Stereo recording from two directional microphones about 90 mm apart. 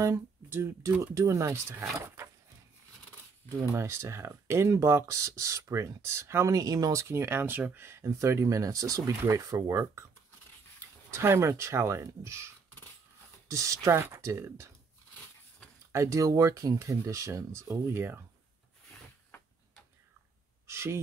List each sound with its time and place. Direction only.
0.0 s speech: 30° right (ahead or behind)
3.4 s speech: 30° right (ahead or behind)
11.1 s speech: 30° right (ahead or behind)
13.5 s speech: 35° right (ahead or behind)
15.9 s speech: 35° right (ahead or behind)
20.6 s a sound: 30° right (ahead or behind)